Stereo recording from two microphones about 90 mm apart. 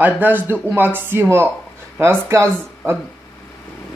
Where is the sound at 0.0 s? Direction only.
20° right (ahead or behind).